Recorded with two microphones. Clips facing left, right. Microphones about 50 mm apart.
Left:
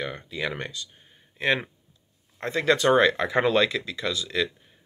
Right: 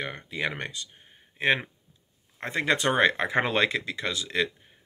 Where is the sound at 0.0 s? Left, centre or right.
Right.